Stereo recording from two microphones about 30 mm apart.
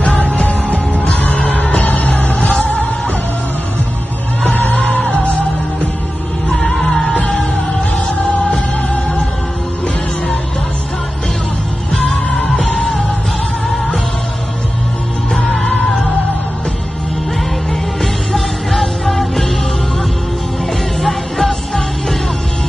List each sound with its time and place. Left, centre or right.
0.0 s music: left
1.5 s music: left
4.5 s music: left
4.8 s music: left
6.5 s music: centre
8.1 s music: left
18.0 s music: centre
21.0 s music: centre